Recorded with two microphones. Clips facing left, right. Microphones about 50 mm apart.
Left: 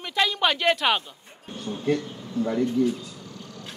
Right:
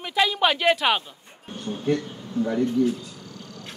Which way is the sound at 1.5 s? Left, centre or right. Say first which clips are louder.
Right 1 dB; right.